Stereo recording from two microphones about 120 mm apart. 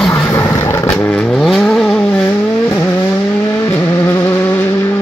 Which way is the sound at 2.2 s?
20° left (ahead or behind).